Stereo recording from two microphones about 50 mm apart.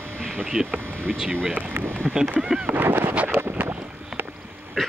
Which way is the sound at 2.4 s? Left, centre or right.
Centre.